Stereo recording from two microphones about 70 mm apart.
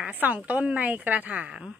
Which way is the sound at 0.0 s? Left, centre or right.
Right.